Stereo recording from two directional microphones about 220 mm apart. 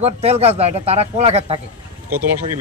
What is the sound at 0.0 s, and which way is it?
A man's voice, 30° right (ahead or behind).